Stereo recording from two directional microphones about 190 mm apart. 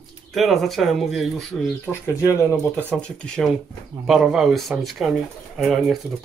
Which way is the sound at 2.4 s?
10° left (ahead or behind).